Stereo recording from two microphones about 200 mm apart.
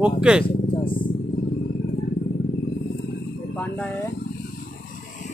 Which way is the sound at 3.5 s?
5° left (ahead or behind).